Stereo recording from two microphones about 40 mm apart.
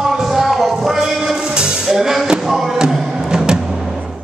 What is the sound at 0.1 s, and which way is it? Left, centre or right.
Music, centre.